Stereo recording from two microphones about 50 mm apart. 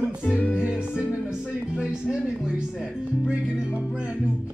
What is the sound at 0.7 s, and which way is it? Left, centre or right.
Music, centre.